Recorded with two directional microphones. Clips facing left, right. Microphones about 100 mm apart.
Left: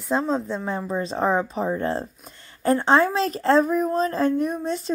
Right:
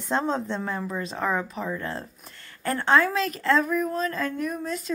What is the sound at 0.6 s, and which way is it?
A woman's voice, 25° left (ahead or behind).